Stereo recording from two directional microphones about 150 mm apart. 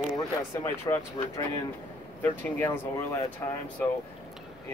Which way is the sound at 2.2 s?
15° left (ahead or behind).